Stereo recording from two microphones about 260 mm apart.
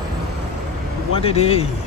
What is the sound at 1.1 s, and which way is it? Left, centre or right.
Speech, left.